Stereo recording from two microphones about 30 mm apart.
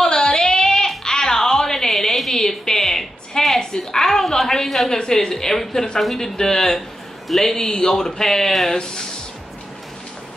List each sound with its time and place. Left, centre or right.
0.0 s a sound: left
3.5 s a woman's voice: centre
7.5 s a woman's voice: left